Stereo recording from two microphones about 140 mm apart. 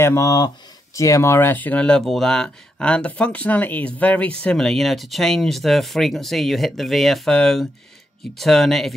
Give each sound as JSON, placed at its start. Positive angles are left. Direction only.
{"t": 0.0, "sound": "speech", "side_deg": 20}